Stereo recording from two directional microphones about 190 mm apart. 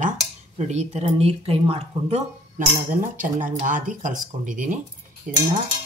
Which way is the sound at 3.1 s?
45° right (ahead or behind).